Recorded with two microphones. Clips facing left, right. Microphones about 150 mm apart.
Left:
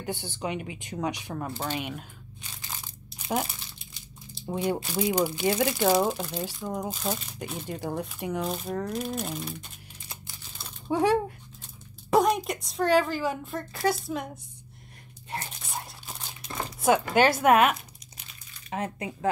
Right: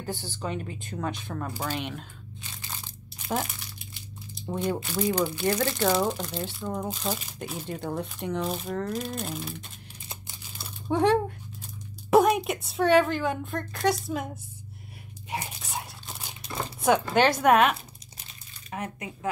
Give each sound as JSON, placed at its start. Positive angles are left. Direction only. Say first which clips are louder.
{"t": 0.0, "sound": "speech", "louder": "left 1 dB", "side_deg": 20}
{"t": 1.5, "sound": "speech", "louder": "even", "side_deg": -10}
{"t": 1.8, "sound": "speech", "louder": "even", "side_deg": 5}
{"t": 4.5, "sound": "a woman's voice", "louder": "left 1 dB", "side_deg": 10}
{"t": 10.9, "sound": "a woman's voice", "louder": "right 1 dB", "side_deg": 5}
{"t": 15.2, "sound": "a sound", "louder": "right 2 dB", "side_deg": -10}
{"t": 16.8, "sound": "a woman's voice", "louder": "even", "side_deg": 5}
{"t": 18.7, "sound": "speech", "louder": "left 3 dB", "side_deg": 25}